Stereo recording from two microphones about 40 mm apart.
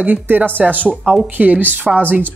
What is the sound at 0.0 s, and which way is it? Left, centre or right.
Speech, right.